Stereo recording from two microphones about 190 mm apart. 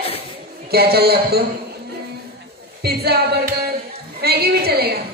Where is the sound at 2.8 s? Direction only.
55° right (ahead or behind).